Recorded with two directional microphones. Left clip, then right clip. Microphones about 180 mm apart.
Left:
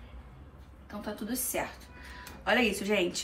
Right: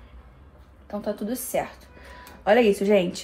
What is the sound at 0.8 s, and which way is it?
A woman's voice, 50° right (ahead or behind).